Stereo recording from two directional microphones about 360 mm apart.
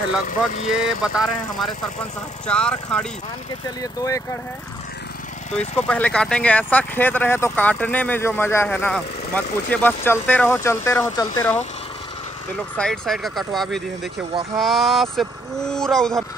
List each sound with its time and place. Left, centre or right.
0.7 s speech: centre
5.6 s speech: centre
12.7 s speech: centre